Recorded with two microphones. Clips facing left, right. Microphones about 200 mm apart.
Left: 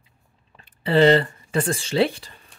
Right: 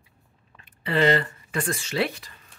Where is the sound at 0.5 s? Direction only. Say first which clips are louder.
Left 6 dB; 30° left (ahead or behind).